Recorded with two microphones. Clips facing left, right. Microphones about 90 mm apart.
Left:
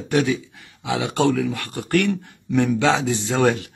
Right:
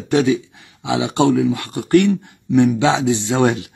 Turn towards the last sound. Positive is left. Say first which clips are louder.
# right 2 dB
turn(degrees=-20)  # may be behind; listen again after turning